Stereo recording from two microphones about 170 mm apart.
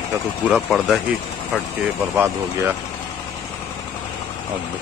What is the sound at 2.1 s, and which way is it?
Speech, 15° right (ahead or behind).